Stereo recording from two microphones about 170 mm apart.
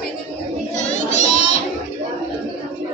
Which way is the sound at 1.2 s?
40° left (ahead or behind).